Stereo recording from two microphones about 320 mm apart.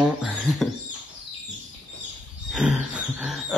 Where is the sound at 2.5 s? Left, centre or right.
Centre.